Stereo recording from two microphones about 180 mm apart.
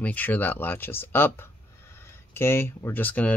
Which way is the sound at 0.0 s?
10° left (ahead or behind).